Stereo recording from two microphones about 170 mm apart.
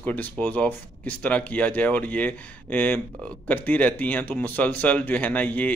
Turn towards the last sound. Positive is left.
turn(degrees=10)  # may be behind; listen again after turning